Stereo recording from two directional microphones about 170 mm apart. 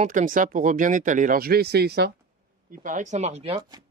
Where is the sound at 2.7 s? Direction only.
50° right (ahead or behind).